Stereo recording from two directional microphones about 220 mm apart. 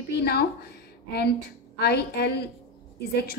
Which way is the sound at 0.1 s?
45° left (ahead or behind).